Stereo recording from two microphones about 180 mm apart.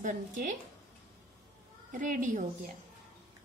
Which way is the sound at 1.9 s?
45° right (ahead or behind).